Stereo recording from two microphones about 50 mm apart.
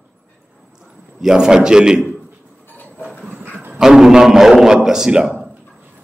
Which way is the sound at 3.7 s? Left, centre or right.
Centre.